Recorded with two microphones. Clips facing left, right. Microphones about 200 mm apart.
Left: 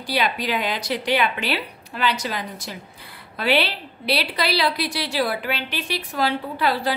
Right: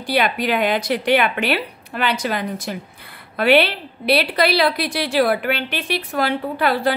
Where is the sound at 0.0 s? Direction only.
55° right (ahead or behind).